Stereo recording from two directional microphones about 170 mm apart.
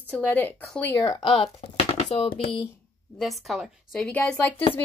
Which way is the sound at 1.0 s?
25° left (ahead or behind).